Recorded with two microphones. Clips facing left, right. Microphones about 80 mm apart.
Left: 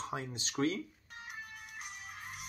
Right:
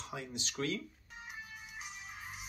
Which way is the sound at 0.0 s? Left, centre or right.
Left.